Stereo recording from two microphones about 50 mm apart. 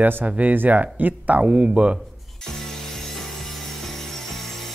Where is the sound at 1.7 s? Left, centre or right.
Right.